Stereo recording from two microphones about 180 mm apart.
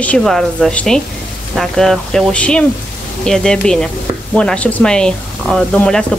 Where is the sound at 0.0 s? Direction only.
5° left (ahead or behind).